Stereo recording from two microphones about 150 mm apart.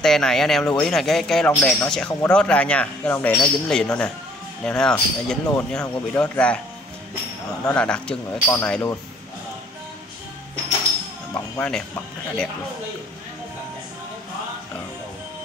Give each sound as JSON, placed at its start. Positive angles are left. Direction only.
{"t": 0.0, "sound": "speech", "side_deg": 5}
{"t": 7.6, "sound": "speech", "side_deg": 5}
{"t": 11.3, "sound": "speech", "side_deg": 15}